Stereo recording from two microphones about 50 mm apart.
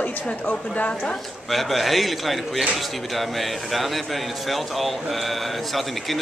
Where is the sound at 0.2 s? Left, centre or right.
Left.